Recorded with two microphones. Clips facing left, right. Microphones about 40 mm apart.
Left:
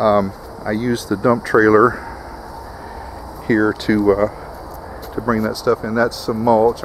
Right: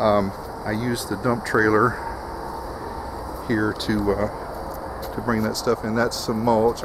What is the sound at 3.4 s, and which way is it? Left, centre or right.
Speech, centre.